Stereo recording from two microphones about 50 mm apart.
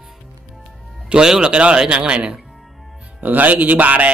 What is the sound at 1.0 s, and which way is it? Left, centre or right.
Speech, centre.